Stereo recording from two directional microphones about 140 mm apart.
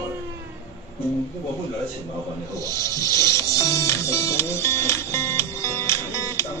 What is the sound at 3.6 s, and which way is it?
Music, 20° left (ahead or behind).